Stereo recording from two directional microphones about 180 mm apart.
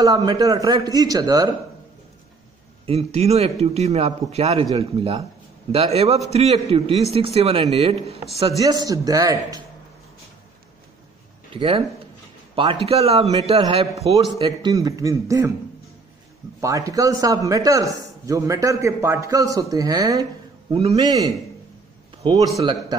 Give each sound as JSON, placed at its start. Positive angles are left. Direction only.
{"t": 0.0, "sound": "a man's voice", "side_deg": -20}
{"t": 2.9, "sound": "speech", "side_deg": -35}
{"t": 6.3, "sound": "speech", "side_deg": -35}
{"t": 8.5, "sound": "a man's voice", "side_deg": -20}
{"t": 11.5, "sound": "speech", "side_deg": -30}
{"t": 12.8, "sound": "a man's voice", "side_deg": -35}
{"t": 16.6, "sound": "a man's voice", "side_deg": -20}